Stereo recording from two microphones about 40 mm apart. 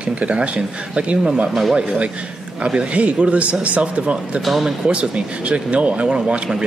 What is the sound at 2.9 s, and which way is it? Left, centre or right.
Speech, right.